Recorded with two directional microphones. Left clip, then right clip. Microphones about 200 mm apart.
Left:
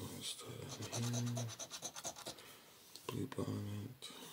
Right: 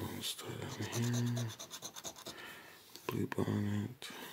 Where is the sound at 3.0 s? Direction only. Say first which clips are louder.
Right 6 dB; 30° right (ahead or behind).